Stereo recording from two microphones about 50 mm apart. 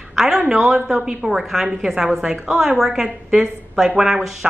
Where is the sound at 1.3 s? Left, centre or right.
Centre.